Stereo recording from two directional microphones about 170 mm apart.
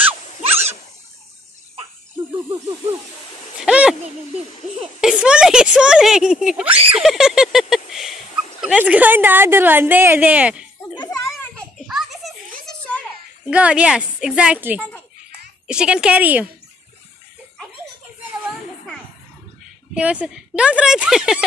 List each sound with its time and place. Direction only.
3.5 s a sound: 5° right (ahead or behind)
5.0 s speech: 5° right (ahead or behind)
11.1 s children playing: 15° left (ahead or behind)
11.9 s a sound: centre (ahead or behind)
13.5 s a woman's voice: 5° right (ahead or behind)
19.9 s speech: 5° right (ahead or behind)